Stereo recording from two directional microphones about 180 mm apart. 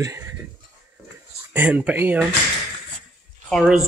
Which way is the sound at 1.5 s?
10° right (ahead or behind).